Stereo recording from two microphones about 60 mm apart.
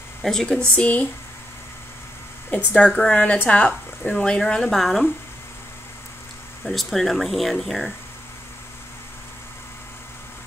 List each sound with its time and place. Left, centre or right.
0.2 s a woman's voice: centre
0.7 s speech: left
2.7 s a woman's voice: left; by 5.0 s centre
6.6 s speech: centre